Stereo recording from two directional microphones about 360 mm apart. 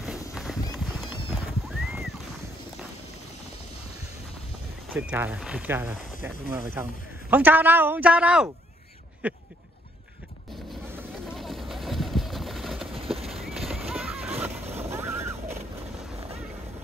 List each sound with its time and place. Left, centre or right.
0.3 s clip-clop: centre
1.0 s music: centre
4.9 s a man's voice: centre
10.7 s vehicle: centre
12.9 s clip-clop: centre
13.3 s horse: centre
14.8 s a sound: centre